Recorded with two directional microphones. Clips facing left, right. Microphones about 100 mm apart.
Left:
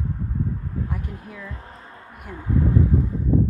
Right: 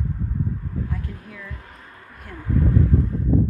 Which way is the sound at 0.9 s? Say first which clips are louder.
Left 1 dB; 20° left (ahead or behind).